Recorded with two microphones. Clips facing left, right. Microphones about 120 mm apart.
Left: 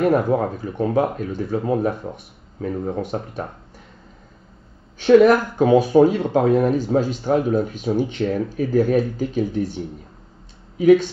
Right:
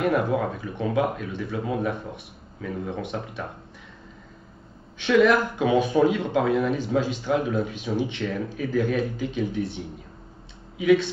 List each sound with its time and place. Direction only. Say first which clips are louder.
0.0 s speech: left 5 dB; 40° left (ahead or behind)
4.9 s speech: left 6 dB; 40° left (ahead or behind)